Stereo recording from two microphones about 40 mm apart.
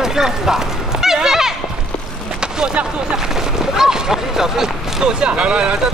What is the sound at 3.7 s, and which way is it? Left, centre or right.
Speech, centre.